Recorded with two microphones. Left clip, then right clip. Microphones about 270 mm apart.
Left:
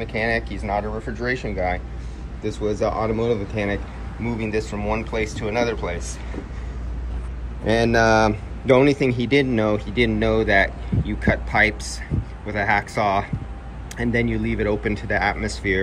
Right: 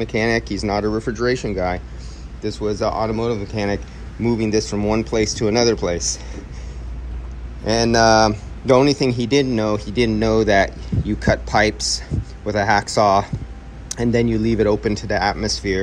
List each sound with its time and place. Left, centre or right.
0.0 s a man's voice: centre
2.9 s speech: right
3.3 s a man's voice: centre
4.7 s speech: right
5.1 s a man's voice: centre
7.6 s a man's voice: centre